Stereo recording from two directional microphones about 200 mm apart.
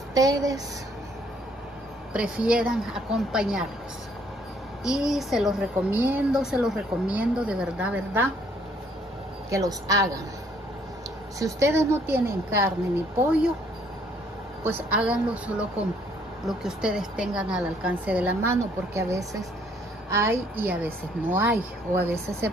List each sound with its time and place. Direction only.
0.1 s a woman's voice: 15° right (ahead or behind)
2.1 s speech: 5° right (ahead or behind)
4.8 s speech: 5° right (ahead or behind)
9.5 s a woman's voice: 15° right (ahead or behind)
11.3 s a woman's voice: 15° right (ahead or behind)
14.6 s a woman's voice: 10° right (ahead or behind)